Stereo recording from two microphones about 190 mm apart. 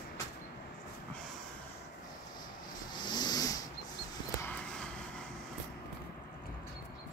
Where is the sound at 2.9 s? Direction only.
25° left (ahead or behind).